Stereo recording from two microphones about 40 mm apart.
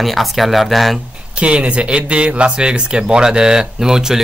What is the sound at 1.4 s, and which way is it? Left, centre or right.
Speech, right.